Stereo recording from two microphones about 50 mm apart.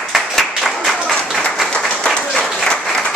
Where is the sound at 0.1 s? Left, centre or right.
Centre.